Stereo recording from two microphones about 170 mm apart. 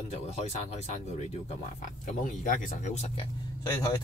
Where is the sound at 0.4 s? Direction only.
40° left (ahead or behind).